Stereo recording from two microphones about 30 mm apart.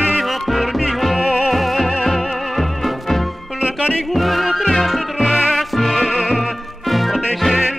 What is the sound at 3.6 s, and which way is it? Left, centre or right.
Music, right.